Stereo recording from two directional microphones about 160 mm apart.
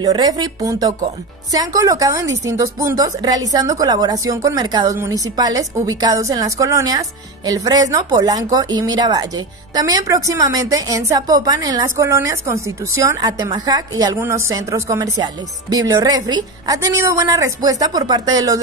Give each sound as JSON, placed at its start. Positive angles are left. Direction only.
{"t": 0.0, "sound": "a woman's voice", "side_deg": -25}